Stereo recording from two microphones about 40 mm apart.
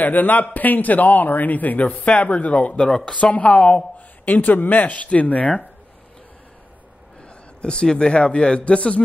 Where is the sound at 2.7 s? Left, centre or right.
Centre.